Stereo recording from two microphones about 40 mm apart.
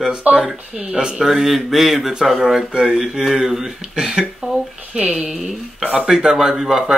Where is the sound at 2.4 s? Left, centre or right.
Centre.